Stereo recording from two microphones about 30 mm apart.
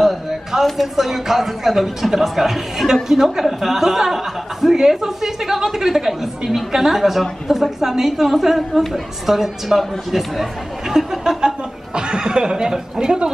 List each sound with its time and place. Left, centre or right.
0.0 s a sound: centre
0.9 s speech: centre
11.4 s chuckle: right